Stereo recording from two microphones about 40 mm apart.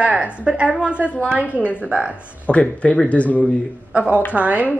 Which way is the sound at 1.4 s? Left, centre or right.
Left.